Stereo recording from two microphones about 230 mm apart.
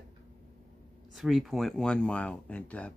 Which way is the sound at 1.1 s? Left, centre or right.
Centre.